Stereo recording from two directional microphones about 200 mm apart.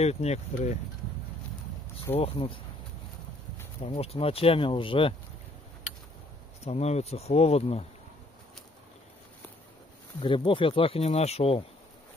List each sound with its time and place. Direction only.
0.0 s speech: 30° left (ahead or behind)
2.1 s speech: 30° left (ahead or behind)
3.9 s speech: 30° left (ahead or behind)
6.6 s speech: 30° left (ahead or behind)
10.2 s speech: 25° left (ahead or behind)